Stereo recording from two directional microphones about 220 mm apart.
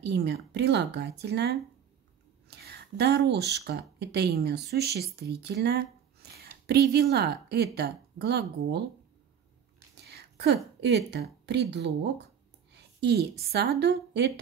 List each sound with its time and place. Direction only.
0.0 s a woman's voice: 50° right (ahead or behind)
2.5 s a sound: 50° right (ahead or behind)
3.5 s a woman's voice: 50° right (ahead or behind)
10.1 s a woman's voice: 50° right (ahead or behind)